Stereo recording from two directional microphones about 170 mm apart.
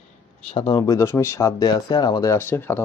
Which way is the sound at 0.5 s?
35° left (ahead or behind).